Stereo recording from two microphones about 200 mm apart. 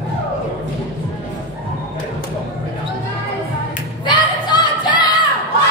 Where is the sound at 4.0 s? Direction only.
20° left (ahead or behind).